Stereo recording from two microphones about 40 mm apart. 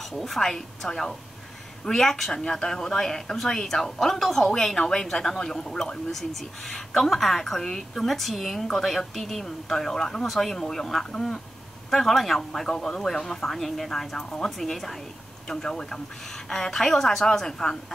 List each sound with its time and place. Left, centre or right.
0.1 s speech: centre
10.2 s speech: centre
11.9 s speech: centre